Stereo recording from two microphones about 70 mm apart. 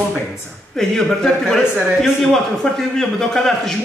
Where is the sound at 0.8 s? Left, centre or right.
Centre.